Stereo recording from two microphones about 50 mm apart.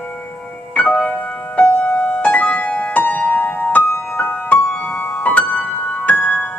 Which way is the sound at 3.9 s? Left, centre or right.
Left.